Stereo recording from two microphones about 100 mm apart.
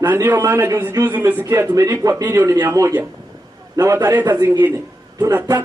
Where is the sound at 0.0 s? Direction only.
20° right (ahead or behind); by 3.9 s 40° right (ahead or behind).